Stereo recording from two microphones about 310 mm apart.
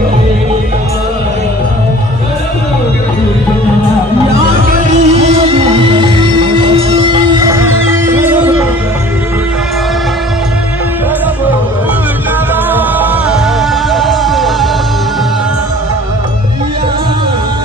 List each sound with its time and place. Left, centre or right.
4.7 s music: right; by 8.6 s centre
13.9 s music: centre